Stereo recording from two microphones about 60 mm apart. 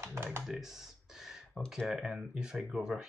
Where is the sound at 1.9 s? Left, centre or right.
Centre.